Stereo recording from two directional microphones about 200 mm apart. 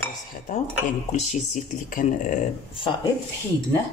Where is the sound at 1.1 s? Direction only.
35° left (ahead or behind).